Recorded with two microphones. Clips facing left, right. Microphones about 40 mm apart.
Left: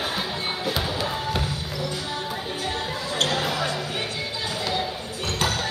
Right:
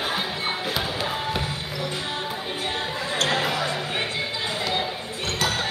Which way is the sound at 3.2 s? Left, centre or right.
Right.